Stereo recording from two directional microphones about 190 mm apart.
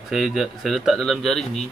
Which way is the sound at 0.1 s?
Centre (ahead or behind).